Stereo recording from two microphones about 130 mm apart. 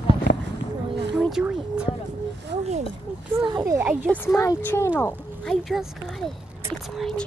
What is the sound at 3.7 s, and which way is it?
Speech, 15° right (ahead or behind).